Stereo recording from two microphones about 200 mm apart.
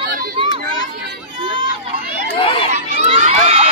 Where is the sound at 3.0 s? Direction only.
35° right (ahead or behind).